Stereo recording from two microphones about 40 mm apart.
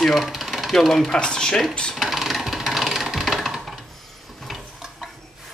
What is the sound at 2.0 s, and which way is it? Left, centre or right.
Mechanisms, centre.